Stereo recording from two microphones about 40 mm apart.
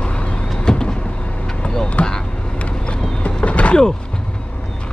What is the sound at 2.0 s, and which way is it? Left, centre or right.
Vehicle, left.